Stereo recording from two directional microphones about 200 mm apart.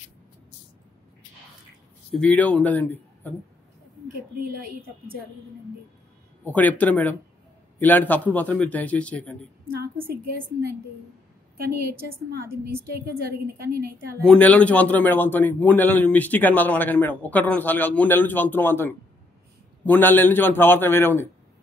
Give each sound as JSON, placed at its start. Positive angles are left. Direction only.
{"t": 2.1, "sound": "a man's voice", "side_deg": 5}
{"t": 6.4, "sound": "a man's voice", "side_deg": 10}
{"t": 12.6, "sound": "a woman's voice", "side_deg": -50}
{"t": 14.2, "sound": "a man's voice", "side_deg": 5}